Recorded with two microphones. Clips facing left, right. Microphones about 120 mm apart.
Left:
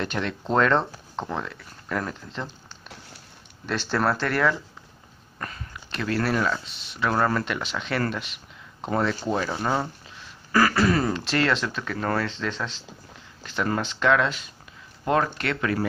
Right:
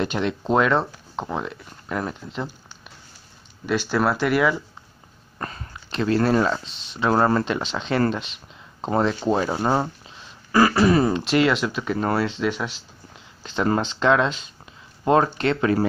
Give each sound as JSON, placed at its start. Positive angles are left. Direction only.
{"t": 0.0, "sound": "speech", "side_deg": -20}
{"t": 3.6, "sound": "speech", "side_deg": -5}
{"t": 5.4, "sound": "speech", "side_deg": -30}
{"t": 13.4, "sound": "speech", "side_deg": -25}